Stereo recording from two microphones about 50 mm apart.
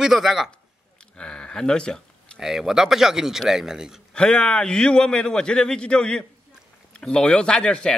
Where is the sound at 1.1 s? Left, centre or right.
Centre.